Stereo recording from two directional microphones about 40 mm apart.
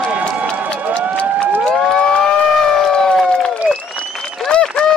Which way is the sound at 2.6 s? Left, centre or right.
Centre.